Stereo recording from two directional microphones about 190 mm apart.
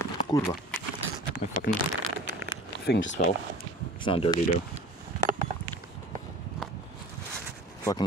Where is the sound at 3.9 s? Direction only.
25° left (ahead or behind).